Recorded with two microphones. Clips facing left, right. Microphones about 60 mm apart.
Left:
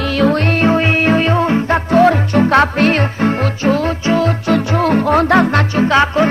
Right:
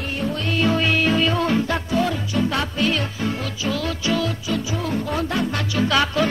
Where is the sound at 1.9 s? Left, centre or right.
Left.